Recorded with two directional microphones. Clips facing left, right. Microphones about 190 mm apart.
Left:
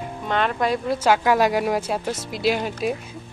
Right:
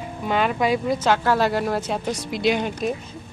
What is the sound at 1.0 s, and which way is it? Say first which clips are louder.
Speech: left 5 dB; 10° left (ahead or behind).